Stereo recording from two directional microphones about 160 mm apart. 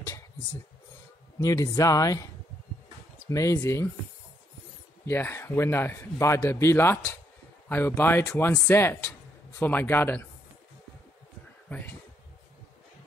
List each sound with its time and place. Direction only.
1.4 s speech: 20° left (ahead or behind)
3.3 s speech: 20° left (ahead or behind)
5.0 s a man's voice: 15° left (ahead or behind)